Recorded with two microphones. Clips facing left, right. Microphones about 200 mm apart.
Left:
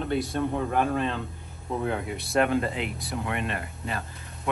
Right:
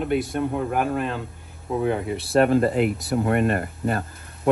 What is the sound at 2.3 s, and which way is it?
Speech, 35° right (ahead or behind).